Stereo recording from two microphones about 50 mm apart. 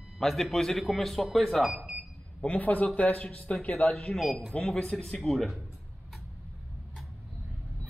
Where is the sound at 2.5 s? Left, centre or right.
Left.